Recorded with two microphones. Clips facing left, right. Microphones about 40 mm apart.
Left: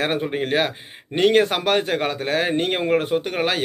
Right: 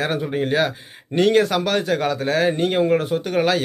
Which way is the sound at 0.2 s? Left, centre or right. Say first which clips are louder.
Right 1 dB; left.